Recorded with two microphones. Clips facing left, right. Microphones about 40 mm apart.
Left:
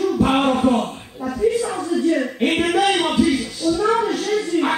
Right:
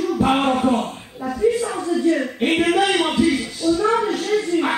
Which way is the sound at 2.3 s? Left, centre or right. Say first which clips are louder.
Right 1 dB; centre.